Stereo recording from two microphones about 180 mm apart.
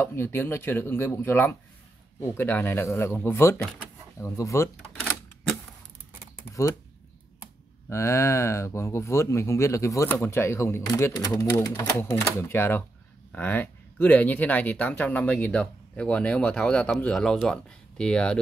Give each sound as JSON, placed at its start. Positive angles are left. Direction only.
{"t": 0.0, "sound": "speech", "side_deg": 10}
{"t": 4.7, "sound": "typewriter", "side_deg": 5}
{"t": 6.5, "sound": "speech", "side_deg": 15}
{"t": 7.9, "sound": "speech", "side_deg": 15}